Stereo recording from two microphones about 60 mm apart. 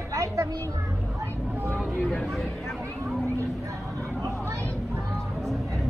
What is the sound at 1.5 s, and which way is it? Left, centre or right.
Vehicle, right.